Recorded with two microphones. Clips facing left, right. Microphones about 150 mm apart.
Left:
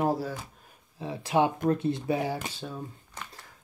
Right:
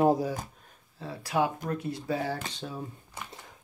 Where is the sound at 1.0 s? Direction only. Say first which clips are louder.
Left 3 dB; 20° left (ahead or behind).